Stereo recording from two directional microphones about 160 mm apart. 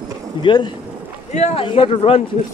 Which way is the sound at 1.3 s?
45° left (ahead or behind).